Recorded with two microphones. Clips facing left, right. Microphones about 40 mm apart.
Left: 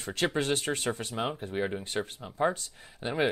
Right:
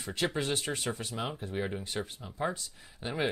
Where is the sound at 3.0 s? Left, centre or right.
Left.